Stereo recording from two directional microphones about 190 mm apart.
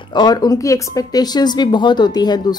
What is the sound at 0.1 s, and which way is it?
Speech, 20° left (ahead or behind).